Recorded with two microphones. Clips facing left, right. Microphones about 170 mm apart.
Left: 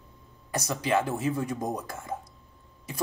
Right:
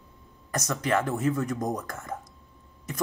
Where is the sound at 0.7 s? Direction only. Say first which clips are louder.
Even; 15° left (ahead or behind).